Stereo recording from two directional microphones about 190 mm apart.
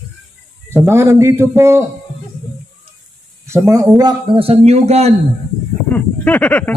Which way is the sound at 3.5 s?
20° right (ahead or behind).